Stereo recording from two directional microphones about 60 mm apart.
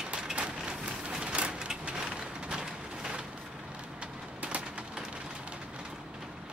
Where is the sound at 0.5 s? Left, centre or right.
Centre.